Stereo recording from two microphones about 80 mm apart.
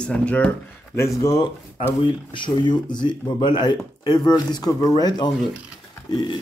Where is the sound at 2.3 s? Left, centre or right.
Left.